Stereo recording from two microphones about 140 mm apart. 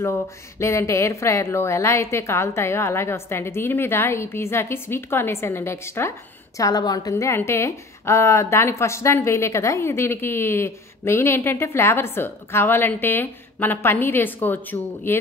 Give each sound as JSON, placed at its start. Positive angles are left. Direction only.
{"t": 0.6, "sound": "a woman's voice", "side_deg": 20}